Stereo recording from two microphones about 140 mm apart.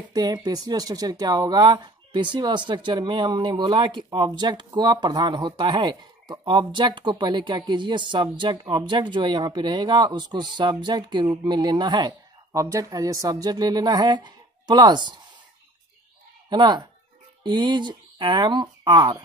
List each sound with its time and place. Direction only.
0.1 s speech: 30° right (ahead or behind)
16.4 s speech: 30° right (ahead or behind)